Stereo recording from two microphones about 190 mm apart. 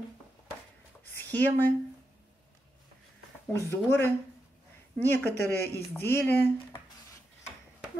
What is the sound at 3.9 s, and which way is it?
Speech, 10° left (ahead or behind).